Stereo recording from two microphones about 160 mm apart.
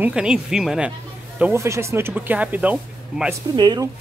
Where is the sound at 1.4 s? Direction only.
15° right (ahead or behind).